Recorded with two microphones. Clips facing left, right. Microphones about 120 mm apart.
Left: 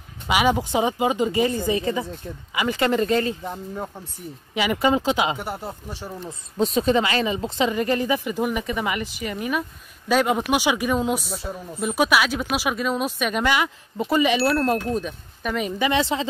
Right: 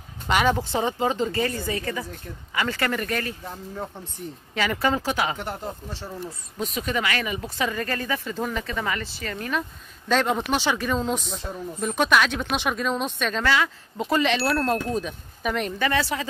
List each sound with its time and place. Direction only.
0.3 s speech: 10° left (ahead or behind)
4.6 s speech: 15° left (ahead or behind)
5.4 s speech: 5° left (ahead or behind)
6.6 s speech: 30° left (ahead or behind)
13.9 s speech: 5° left (ahead or behind)
15.8 s speech: 20° left (ahead or behind)